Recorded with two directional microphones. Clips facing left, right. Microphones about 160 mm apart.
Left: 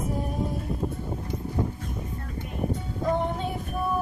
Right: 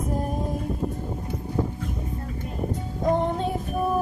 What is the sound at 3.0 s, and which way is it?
Music, 40° right (ahead or behind).